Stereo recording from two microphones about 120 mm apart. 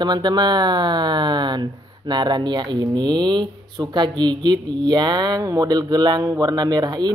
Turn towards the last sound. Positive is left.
turn(degrees=-35)  # may be behind; listen again after turning